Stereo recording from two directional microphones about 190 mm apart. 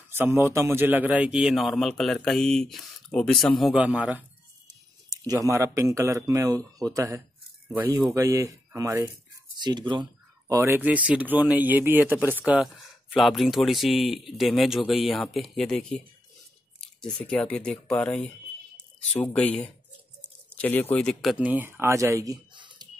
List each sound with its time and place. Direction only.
0.1 s a man's voice: 10° right (ahead or behind)
5.1 s speech: 20° right (ahead or behind)
10.5 s a man's voice: 15° right (ahead or behind)